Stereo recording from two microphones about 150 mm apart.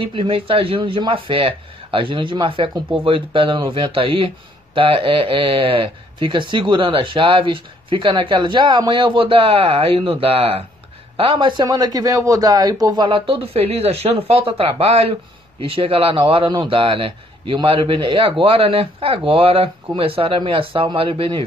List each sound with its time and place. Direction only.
0.0 s speech: 35° right (ahead or behind)